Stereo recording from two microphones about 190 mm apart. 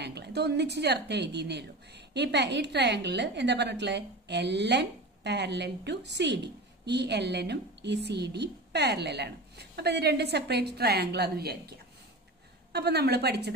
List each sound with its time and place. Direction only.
0.0 s a woman's voice: 60° right (ahead or behind)